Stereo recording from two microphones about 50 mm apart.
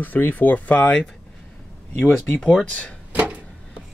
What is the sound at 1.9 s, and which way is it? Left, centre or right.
Speech, left.